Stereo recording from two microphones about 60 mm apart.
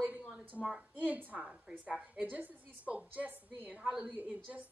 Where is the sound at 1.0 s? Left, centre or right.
Right.